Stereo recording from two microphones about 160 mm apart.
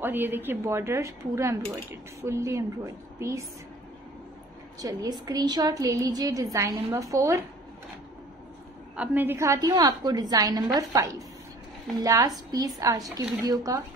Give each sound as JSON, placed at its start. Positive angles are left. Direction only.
{"t": 0.0, "sound": "a woman's voice", "side_deg": -10}
{"t": 4.7, "sound": "a woman's voice", "side_deg": -25}
{"t": 8.9, "sound": "a woman's voice", "side_deg": -10}